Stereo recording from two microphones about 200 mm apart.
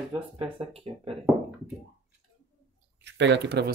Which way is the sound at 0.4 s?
25° right (ahead or behind).